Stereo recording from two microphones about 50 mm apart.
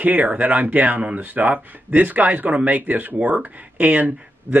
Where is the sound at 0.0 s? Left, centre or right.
Right.